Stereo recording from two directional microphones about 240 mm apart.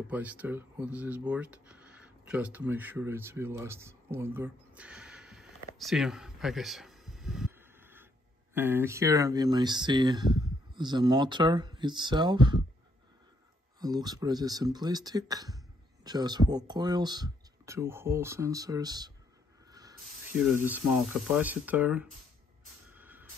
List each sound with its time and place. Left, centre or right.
0.1 s speech: centre
13.7 s speech: centre
19.7 s spray: centre
20.3 s speech: centre
22.8 s a sound: centre